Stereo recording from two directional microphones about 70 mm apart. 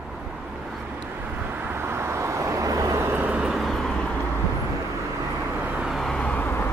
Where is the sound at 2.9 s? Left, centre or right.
Right.